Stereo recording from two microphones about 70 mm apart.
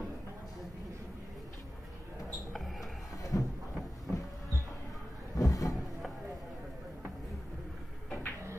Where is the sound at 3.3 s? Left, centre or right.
Left.